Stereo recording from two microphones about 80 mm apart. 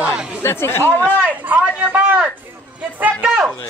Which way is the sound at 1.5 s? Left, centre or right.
Right.